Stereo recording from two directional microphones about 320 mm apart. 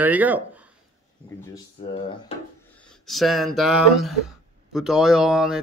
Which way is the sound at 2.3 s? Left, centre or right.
Centre.